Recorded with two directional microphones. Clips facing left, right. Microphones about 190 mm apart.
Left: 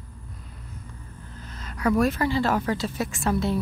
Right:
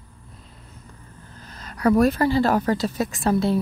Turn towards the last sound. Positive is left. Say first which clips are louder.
# right 4 dB
turn(degrees=-35)  # may be behind; listen again after turning